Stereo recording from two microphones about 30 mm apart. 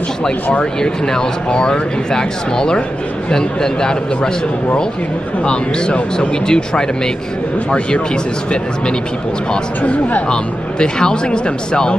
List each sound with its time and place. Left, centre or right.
0.7 s speech: left
5.4 s a man's voice: left
9.8 s speech: left
10.2 s speech: left